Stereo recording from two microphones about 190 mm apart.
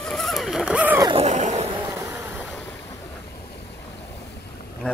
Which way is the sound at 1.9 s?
10° right (ahead or behind).